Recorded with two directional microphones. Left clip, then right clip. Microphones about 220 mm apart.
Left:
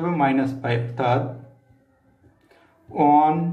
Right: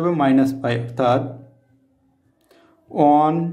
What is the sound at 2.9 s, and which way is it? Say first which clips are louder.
Speech: right 1 dB; 65° right (ahead or behind).